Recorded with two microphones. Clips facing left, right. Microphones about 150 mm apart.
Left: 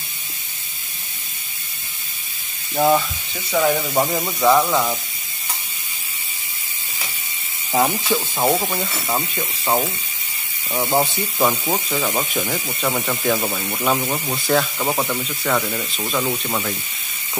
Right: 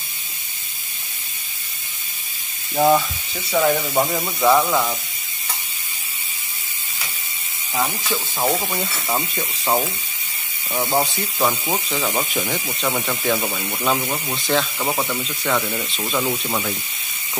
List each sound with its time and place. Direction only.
2.7 s speech: centre (ahead or behind)
7.7 s speech: 25° left (ahead or behind)
8.4 s speech: 5° left (ahead or behind)